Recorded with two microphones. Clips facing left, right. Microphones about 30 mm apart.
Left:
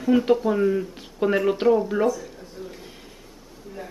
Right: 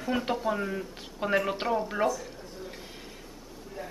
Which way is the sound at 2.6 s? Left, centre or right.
Left.